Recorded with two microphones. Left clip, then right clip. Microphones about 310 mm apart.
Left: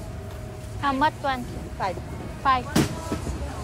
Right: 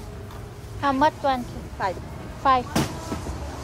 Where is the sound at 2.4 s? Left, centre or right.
Centre.